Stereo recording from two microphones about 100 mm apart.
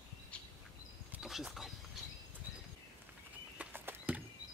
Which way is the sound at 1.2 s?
Centre (ahead or behind).